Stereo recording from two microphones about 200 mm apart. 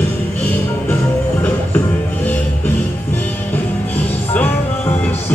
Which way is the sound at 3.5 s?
10° left (ahead or behind).